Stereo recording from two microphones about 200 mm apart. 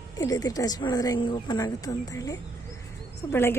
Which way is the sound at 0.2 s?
15° left (ahead or behind).